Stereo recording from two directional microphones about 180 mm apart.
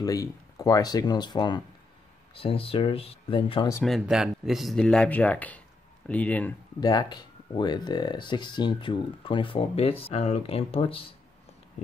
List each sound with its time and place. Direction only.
0.0 s speech: 20° left (ahead or behind)
3.8 s speech: centre (ahead or behind)
6.8 s speech: 20° left (ahead or behind)